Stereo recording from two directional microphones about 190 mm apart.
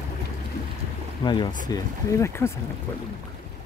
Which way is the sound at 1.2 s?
25° left (ahead or behind).